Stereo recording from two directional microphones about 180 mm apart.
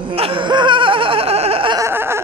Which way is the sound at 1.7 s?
15° right (ahead or behind).